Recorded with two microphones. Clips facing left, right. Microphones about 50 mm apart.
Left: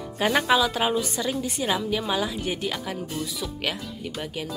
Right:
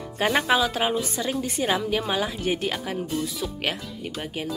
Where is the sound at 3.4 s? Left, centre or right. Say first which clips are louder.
Right 2 dB; centre.